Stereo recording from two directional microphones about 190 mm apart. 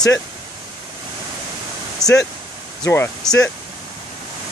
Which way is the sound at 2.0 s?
Centre (ahead or behind).